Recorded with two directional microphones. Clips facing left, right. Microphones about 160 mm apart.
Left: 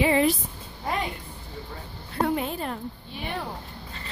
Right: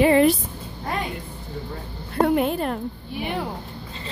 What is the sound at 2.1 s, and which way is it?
Speech, 60° right (ahead or behind).